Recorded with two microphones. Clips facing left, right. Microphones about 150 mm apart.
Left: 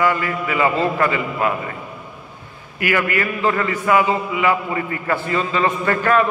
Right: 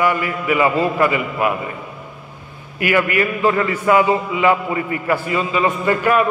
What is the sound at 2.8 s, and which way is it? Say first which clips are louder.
A man's voice: right 3 dB; 20° right (ahead or behind).